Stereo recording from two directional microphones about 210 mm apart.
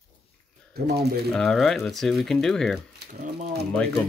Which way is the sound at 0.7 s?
50° right (ahead or behind).